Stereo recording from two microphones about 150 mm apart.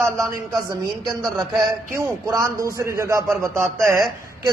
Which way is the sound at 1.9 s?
20° right (ahead or behind).